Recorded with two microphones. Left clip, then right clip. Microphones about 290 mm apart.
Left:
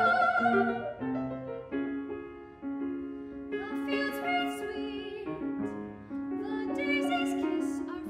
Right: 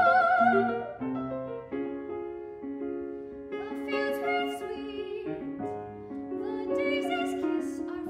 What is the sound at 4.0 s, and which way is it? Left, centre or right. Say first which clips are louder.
Music: right 3 dB; centre.